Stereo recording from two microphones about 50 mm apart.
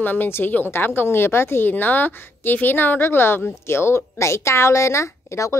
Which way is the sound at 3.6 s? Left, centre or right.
Left.